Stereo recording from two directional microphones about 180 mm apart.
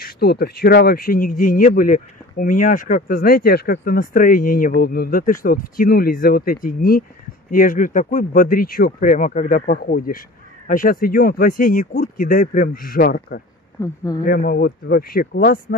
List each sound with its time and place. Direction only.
0.0 s speech: 60° left (ahead or behind)
13.7 s speech: 20° left (ahead or behind)
14.2 s speech: 55° left (ahead or behind)